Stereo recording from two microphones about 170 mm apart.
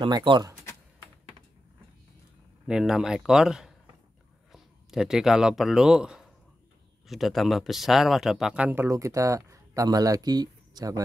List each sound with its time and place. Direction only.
0.0 s speech: 30° right (ahead or behind)
2.6 s speech: 5° right (ahead or behind)
8.8 s speech: 20° right (ahead or behind)